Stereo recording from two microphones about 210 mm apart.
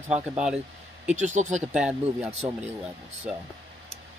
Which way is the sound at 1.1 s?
35° right (ahead or behind).